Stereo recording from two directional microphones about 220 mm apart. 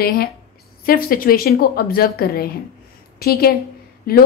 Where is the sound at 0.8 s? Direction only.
40° left (ahead or behind).